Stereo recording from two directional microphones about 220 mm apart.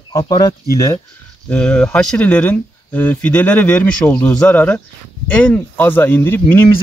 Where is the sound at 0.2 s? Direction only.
20° left (ahead or behind).